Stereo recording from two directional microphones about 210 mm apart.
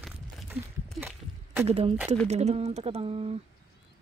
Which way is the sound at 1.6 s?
30° right (ahead or behind).